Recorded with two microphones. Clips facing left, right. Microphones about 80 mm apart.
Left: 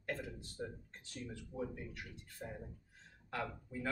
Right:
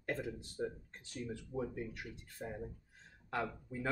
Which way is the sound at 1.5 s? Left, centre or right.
Right.